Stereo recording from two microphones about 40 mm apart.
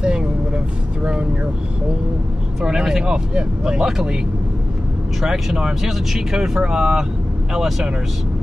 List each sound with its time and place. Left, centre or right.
0.0 s vehicle: right
2.6 s speech: centre
5.2 s speech: centre